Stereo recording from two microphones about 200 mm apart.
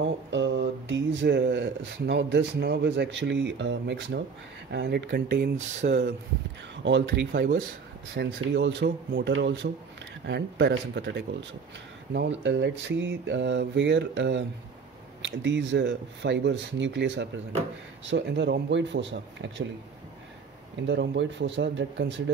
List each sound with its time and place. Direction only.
0.3 s speech: 60° right (ahead or behind); by 6.1 s 40° right (ahead or behind)
6.8 s speech: 65° right (ahead or behind)
20.8 s speech: 60° right (ahead or behind)